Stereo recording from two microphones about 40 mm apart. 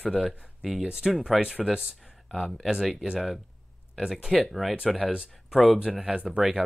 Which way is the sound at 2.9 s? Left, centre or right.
Centre.